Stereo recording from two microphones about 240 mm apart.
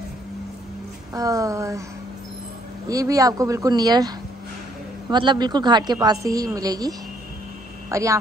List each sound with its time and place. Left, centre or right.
1.1 s speech: centre
2.9 s speech: centre
5.1 s speech: centre